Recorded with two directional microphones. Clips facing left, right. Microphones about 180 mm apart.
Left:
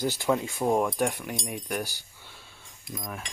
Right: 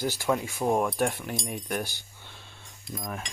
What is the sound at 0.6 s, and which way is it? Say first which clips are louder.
Speech: even; centre (ahead or behind).